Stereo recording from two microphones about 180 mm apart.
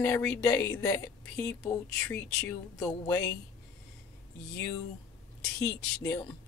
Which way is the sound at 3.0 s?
15° left (ahead or behind).